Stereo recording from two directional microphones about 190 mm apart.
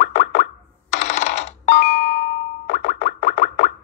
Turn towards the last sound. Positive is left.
turn(degrees=40)  # may be behind; listen again after turning